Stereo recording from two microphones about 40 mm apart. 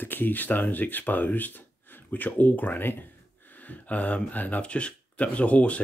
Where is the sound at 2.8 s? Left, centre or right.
Left.